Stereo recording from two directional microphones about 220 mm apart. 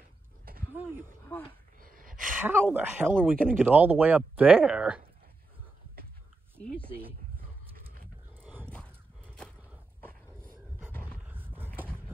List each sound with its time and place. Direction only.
1.3 s speech: 5° left (ahead or behind)
1.8 s a sound: 40° right (ahead or behind)
2.4 s speech: 10° right (ahead or behind)
8.4 s a sound: 10° right (ahead or behind)
8.6 s horse: 5° left (ahead or behind)
10.9 s roar: 5° left (ahead or behind)
11.2 s roaring cats: 10° right (ahead or behind)